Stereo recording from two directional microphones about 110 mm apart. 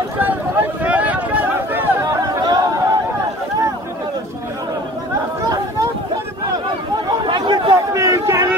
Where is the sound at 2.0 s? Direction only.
35° right (ahead or behind).